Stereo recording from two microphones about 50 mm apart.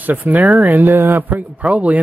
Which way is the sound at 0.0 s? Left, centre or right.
Right.